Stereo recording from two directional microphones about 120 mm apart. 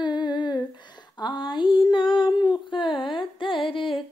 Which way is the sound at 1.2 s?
40° left (ahead or behind).